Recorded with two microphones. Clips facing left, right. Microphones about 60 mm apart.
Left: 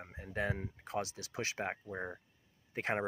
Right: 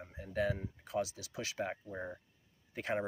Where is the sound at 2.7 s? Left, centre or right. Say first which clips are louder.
Left 1 dB; left.